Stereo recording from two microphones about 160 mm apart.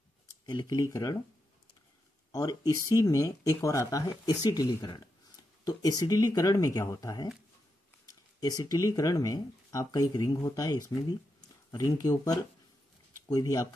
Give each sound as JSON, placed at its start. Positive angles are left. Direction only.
{"t": 0.5, "sound": "speech", "side_deg": 25}
{"t": 2.3, "sound": "speech", "side_deg": 25}
{"t": 8.4, "sound": "speech", "side_deg": 25}